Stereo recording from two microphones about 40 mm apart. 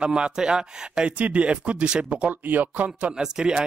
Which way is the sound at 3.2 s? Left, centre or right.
Centre.